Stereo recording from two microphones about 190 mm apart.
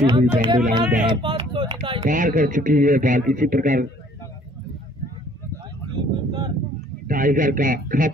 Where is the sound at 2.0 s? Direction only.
45° right (ahead or behind).